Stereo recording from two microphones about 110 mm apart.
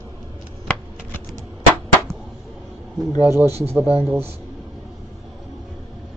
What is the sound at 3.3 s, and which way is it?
Speech, 25° right (ahead or behind).